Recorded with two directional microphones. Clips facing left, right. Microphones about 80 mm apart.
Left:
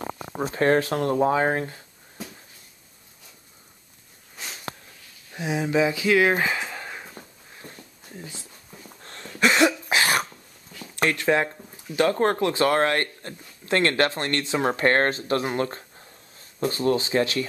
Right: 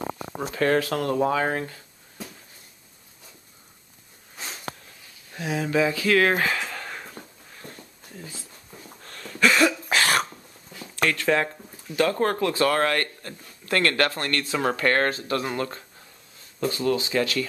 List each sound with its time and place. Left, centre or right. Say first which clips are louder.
0.0 s a sound: right 1 dB; centre
0.4 s speech: left 2 dB; left
4.4 s sniff: even; centre
5.3 s speech: left 1 dB; centre
9.0 s a sound: even; left
9.3 s cough: even; left
9.9 s cough: right 2 dB; centre
11.1 s speech: left 1 dB; centre
12.0 s speech: left 1 dB; left